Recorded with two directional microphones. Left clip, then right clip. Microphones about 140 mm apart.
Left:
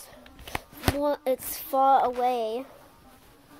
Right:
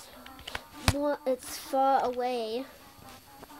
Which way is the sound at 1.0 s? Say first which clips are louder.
Left 3 dB; 5° right (ahead or behind).